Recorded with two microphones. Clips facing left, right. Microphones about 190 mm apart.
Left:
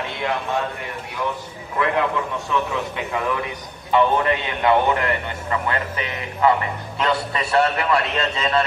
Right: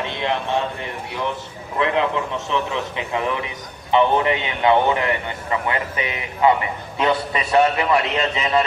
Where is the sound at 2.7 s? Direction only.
20° right (ahead or behind).